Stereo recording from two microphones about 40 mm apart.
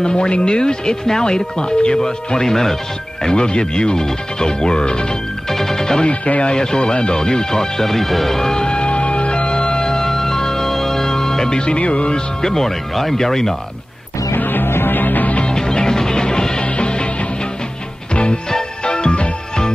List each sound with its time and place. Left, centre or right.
0.0 s speech: left
3.3 s speech: left
5.5 s music: centre
6.0 s speech: left
6.5 s speech: centre
8.5 s music: left
14.3 s music: left
15.4 s music: centre